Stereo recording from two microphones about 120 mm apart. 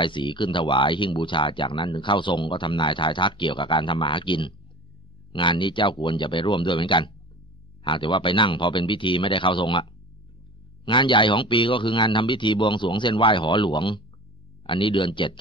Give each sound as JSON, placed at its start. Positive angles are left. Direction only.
{"t": 0.0, "sound": "speech", "side_deg": 45}
{"t": 10.9, "sound": "speech", "side_deg": 45}